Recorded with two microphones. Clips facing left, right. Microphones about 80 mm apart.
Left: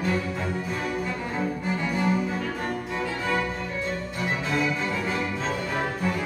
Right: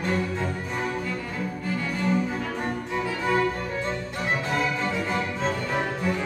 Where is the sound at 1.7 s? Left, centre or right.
Centre.